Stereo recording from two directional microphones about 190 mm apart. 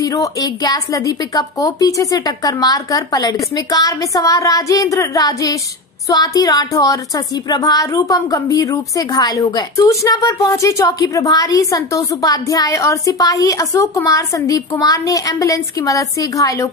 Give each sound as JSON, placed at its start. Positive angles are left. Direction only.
{"t": 0.0, "sound": "a woman's voice", "side_deg": 20}